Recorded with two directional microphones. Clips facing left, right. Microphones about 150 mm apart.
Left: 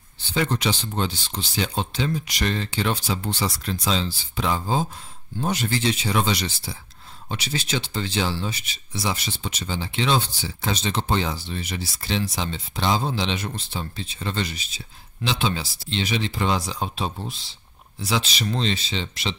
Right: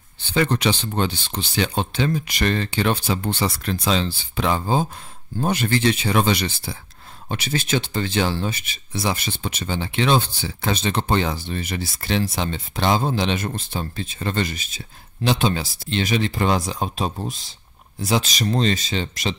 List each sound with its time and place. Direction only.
0.3 s speech: 65° right (ahead or behind); by 19.3 s 45° right (ahead or behind)